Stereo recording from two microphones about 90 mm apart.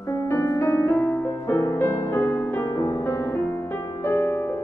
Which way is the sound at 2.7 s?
40° left (ahead or behind).